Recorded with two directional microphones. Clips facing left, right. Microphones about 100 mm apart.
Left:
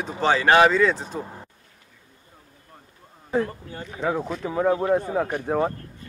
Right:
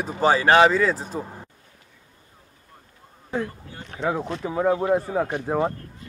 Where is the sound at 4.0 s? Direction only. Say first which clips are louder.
Even; centre (ahead or behind).